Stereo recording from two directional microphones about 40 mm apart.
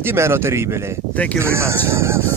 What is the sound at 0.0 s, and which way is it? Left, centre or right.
Speech, right.